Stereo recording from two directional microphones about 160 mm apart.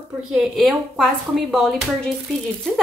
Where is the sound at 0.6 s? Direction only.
Centre (ahead or behind).